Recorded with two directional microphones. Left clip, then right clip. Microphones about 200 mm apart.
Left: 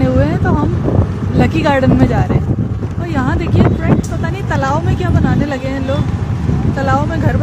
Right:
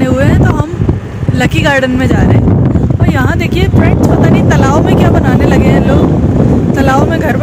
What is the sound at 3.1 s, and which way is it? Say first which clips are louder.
Speech: right 4 dB; 15° right (ahead or behind).